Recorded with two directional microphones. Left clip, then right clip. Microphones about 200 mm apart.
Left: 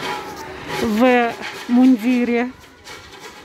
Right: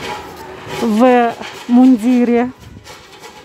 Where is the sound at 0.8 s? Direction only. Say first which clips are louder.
Right 5 dB; 10° right (ahead or behind).